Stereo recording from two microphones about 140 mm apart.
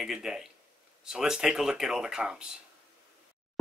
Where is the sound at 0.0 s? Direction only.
5° right (ahead or behind).